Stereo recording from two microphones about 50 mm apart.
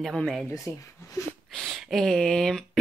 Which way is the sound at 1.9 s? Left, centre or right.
Centre.